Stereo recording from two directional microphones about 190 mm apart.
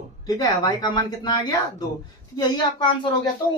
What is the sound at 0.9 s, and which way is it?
Speech, 20° left (ahead or behind).